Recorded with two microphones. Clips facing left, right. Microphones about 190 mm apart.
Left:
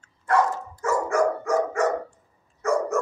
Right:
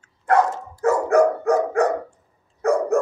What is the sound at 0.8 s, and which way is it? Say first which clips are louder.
Dog: right 6 dB; 60° right (ahead or behind).